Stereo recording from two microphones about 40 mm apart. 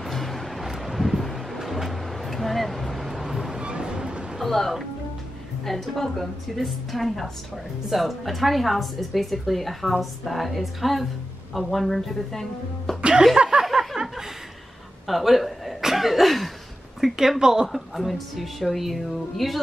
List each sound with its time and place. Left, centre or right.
0.0 s vehicle: centre
4.4 s a woman's voice: centre
13.5 s a sound: right
13.9 s a man's voice: centre
15.8 s cough: centre
17.0 s speech: centre
17.9 s a woman's voice: centre